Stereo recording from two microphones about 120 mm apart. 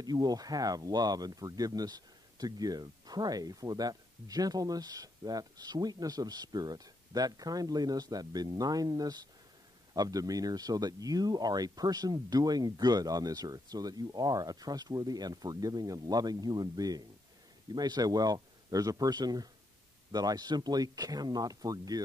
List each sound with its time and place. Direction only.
0.0 s speech: 35° right (ahead or behind)